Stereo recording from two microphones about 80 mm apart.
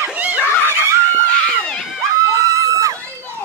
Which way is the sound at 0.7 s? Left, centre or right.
Right.